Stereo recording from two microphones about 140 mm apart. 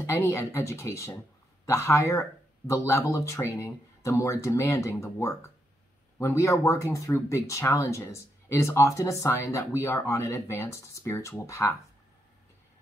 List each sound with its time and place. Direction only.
0.0 s speech: 20° left (ahead or behind)